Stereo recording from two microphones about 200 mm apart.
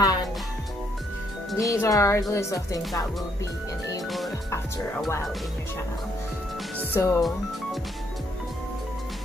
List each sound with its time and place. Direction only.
0.0 s music: 20° left (ahead or behind)
1.6 s speech: 15° left (ahead or behind)
6.8 s speech: 15° left (ahead or behind)
7.2 s speech: centre (ahead or behind)